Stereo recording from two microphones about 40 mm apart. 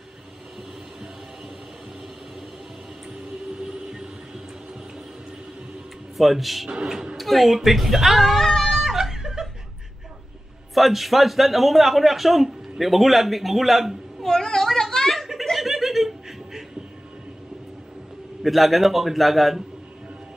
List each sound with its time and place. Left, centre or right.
3.1 s music: centre
6.1 s a man's voice: centre
6.7 s speech: centre
7.2 s speech: centre
8.9 s laughter: centre
10.7 s a man's voice: centre
14.2 s a sound: centre
15.5 s chuckle: centre
18.4 s a man's voice: centre